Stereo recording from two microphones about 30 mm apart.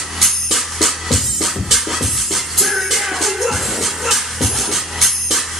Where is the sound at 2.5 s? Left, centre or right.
Centre.